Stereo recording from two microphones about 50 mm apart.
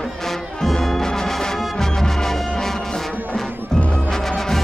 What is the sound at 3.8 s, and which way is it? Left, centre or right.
Music, left.